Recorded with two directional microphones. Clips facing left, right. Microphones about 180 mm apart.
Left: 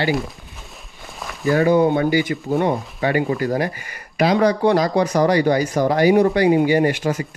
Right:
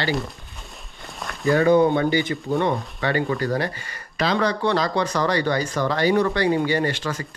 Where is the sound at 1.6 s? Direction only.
10° left (ahead or behind).